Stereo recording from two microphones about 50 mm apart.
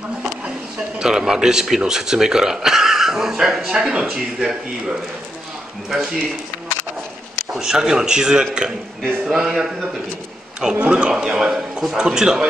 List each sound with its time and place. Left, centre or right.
0.9 s speech: centre
3.7 s speech: centre
5.9 s speech: centre
7.5 s speech: centre